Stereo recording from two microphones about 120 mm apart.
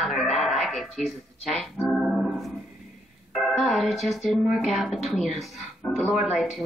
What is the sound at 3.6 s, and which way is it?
A woman's voice, centre (ahead or behind).